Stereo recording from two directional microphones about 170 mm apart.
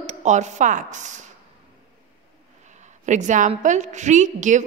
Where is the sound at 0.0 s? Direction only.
45° right (ahead or behind).